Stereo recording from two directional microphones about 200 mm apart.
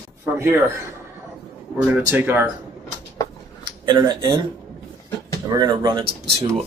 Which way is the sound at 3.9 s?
20° right (ahead or behind).